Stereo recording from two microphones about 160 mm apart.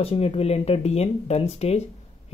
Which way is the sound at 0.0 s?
40° left (ahead or behind).